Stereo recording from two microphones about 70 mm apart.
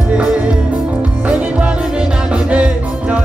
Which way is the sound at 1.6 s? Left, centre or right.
Centre.